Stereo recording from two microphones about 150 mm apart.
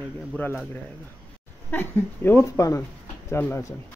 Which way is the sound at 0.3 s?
10° left (ahead or behind).